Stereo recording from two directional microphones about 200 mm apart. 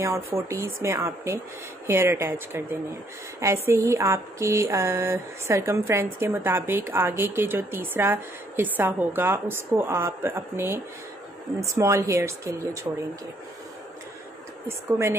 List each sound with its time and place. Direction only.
0.0 s speech: 15° right (ahead or behind)
3.6 s speech: 15° right (ahead or behind)
14.7 s speech: 15° right (ahead or behind)